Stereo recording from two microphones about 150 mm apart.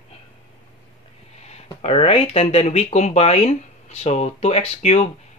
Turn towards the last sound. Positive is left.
turn(degrees=45)  # may be behind; listen again after turning